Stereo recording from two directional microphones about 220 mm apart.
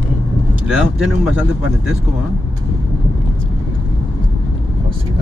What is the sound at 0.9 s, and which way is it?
Speech, 5° right (ahead or behind).